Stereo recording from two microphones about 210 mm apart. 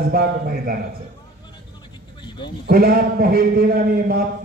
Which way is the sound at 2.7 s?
45° right (ahead or behind).